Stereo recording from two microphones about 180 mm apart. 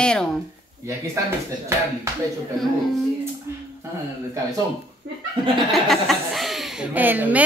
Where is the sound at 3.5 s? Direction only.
15° right (ahead or behind).